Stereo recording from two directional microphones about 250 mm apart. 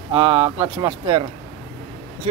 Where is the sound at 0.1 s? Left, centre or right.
Right.